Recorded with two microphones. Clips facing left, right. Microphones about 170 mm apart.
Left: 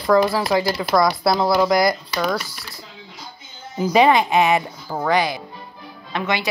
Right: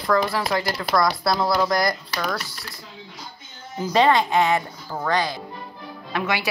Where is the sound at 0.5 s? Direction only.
15° left (ahead or behind).